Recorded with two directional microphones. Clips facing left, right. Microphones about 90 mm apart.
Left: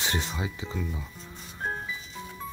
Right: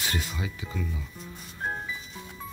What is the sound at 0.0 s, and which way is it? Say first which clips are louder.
Speech: left 2 dB; 25° left (ahead or behind).